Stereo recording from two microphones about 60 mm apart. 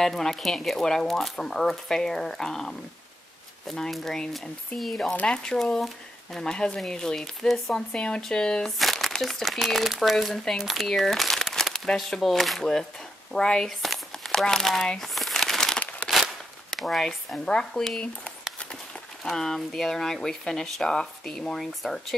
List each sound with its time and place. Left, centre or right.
0.0 s speech: centre
5.1 s speech: centre
7.9 s speech: centre
8.7 s speech: centre
15.0 s crumpling: centre
16.0 s a sound: left
16.7 s speech: centre
19.2 s speech: centre